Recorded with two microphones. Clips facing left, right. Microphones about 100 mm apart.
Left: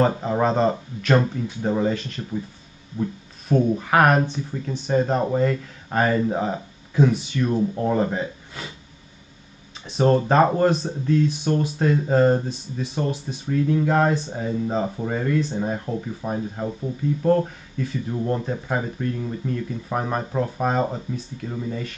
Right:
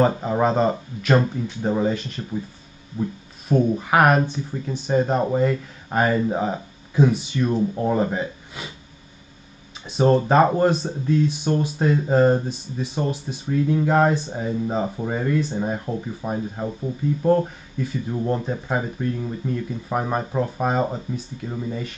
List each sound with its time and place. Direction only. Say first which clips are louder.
0.0 s speech: right 1 dB; 5° right (ahead or behind)
7.1 s speech: right 1 dB; 15° right (ahead or behind)
9.8 s speech: right 1 dB; 15° right (ahead or behind)